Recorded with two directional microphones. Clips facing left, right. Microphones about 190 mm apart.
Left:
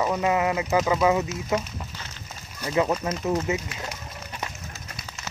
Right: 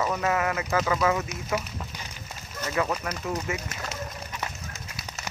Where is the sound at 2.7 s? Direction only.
20° left (ahead or behind).